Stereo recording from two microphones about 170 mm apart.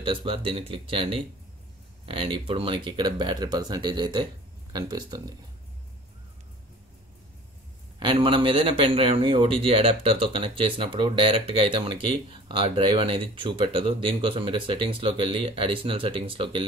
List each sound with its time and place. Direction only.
0.0 s a man's voice: 30° right (ahead or behind)
8.0 s a man's voice: 30° right (ahead or behind)